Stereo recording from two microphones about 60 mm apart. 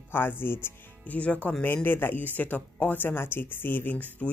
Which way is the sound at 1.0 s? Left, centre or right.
Left.